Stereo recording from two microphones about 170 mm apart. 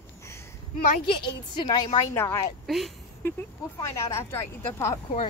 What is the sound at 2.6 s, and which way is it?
Speech, centre (ahead or behind).